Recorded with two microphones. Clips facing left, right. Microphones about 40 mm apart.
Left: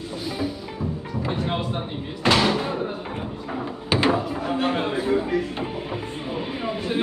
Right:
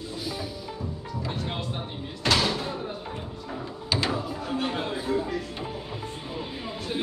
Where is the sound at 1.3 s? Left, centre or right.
Left.